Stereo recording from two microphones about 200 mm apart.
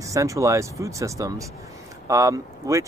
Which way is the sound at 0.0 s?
15° right (ahead or behind).